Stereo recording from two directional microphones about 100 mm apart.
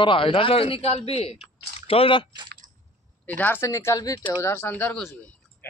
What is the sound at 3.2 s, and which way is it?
Speech, 20° left (ahead or behind).